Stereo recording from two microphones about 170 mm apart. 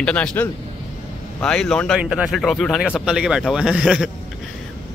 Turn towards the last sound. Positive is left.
turn(degrees=-5)  # may be behind; listen again after turning